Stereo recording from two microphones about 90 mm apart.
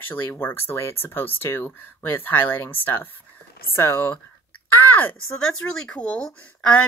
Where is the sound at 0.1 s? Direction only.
20° left (ahead or behind).